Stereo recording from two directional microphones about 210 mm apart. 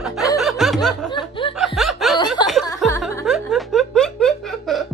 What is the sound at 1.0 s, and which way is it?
Snicker, 20° left (ahead or behind).